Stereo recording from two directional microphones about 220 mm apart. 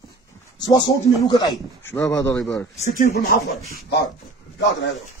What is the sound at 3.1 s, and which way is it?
Speech, 45° left (ahead or behind).